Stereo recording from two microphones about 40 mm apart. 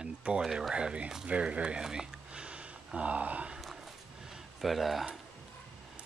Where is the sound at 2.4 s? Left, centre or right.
Right.